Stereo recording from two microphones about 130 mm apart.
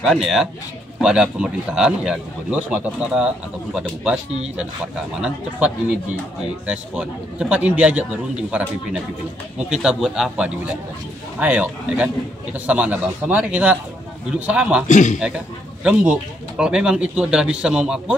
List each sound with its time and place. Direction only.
0.0 s a man's voice: centre (ahead or behind)
5.2 s a man's voice: 10° right (ahead or behind)
14.9 s a man's voice: 70° left (ahead or behind)
15.1 s a man's voice: 5° right (ahead or behind)